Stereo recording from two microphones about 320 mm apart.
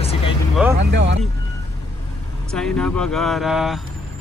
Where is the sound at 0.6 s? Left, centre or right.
Centre.